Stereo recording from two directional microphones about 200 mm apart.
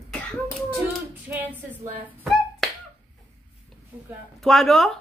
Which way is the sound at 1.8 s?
10° right (ahead or behind).